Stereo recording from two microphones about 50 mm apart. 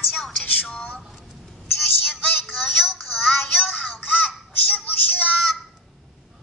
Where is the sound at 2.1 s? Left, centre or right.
Left.